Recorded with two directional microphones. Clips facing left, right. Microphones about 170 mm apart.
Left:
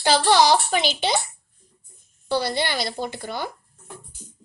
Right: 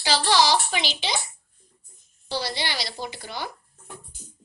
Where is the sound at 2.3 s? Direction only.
55° left (ahead or behind).